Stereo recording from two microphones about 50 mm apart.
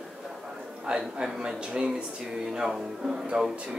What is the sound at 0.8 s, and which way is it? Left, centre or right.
A man's voice, centre.